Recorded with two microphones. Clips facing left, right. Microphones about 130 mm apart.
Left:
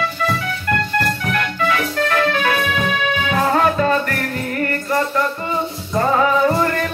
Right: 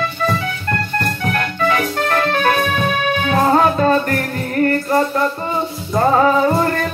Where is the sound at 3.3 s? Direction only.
35° right (ahead or behind).